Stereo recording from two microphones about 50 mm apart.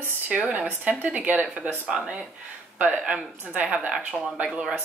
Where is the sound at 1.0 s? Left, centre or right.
Right.